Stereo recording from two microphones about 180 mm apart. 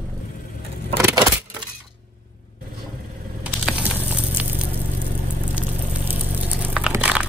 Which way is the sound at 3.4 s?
5° right (ahead or behind).